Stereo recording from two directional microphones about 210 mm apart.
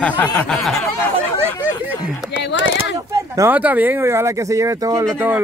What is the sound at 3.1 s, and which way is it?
A man's voice, 15° right (ahead or behind).